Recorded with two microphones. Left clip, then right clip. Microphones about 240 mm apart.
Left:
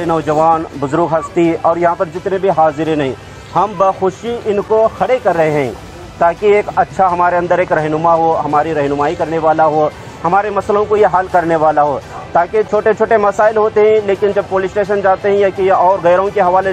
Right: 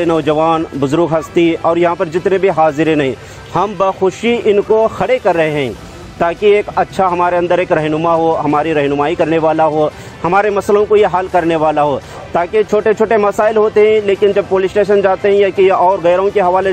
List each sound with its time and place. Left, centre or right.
0.0 s speech: right